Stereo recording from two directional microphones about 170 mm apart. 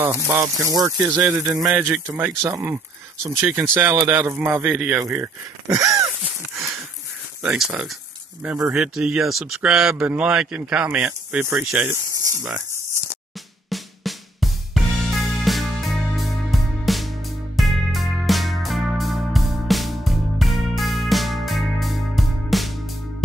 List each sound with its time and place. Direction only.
0.0 s speech: 15° right (ahead or behind)
1.6 s speech: 5° right (ahead or behind)
2.0 s speech: 20° right (ahead or behind)
5.0 s a sound: 15° right (ahead or behind)
7.5 s speech: 5° right (ahead or behind)
11.9 s speech: 20° right (ahead or behind)
13.7 s drum: centre (ahead or behind)
15.4 s music: centre (ahead or behind)